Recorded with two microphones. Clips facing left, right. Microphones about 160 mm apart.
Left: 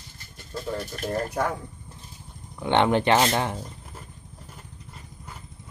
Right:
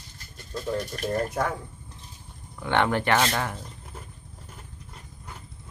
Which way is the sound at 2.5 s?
20° left (ahead or behind).